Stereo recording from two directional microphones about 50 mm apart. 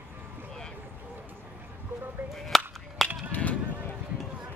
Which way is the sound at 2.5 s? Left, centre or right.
Centre.